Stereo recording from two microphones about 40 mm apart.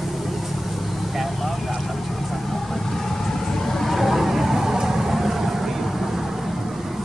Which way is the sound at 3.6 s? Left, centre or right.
Centre.